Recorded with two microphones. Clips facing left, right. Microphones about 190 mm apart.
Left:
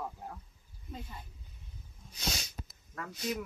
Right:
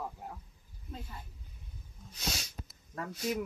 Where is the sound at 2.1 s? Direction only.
Centre (ahead or behind).